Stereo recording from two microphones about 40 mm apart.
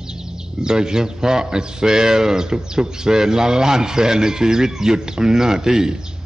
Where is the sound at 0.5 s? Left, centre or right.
Centre.